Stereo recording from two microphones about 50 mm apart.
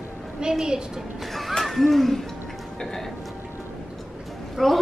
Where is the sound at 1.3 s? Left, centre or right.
Centre.